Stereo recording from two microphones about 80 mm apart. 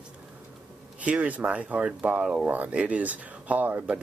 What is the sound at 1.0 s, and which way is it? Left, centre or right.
Speech, centre.